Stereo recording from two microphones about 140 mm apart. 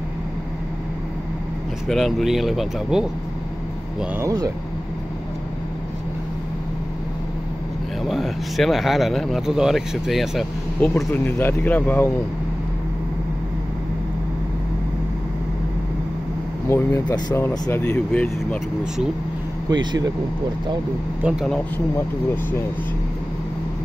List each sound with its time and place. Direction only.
1.9 s speech: centre (ahead or behind)
4.2 s speech: 25° right (ahead or behind)
8.0 s speech: centre (ahead or behind)
11.1 s speech: 15° left (ahead or behind)
16.6 s speech: 20° left (ahead or behind)
19.7 s speech: 30° right (ahead or behind)
21.2 s speech: 5° right (ahead or behind)
21.5 s speech: 10° left (ahead or behind)